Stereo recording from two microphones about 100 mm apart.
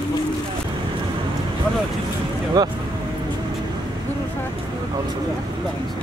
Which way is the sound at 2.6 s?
40° right (ahead or behind).